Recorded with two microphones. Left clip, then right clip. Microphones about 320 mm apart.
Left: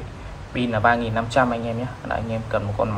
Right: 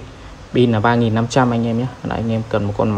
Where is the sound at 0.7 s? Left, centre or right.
Right.